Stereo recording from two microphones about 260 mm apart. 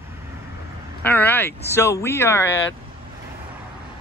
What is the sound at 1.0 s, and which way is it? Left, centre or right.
Speech, centre.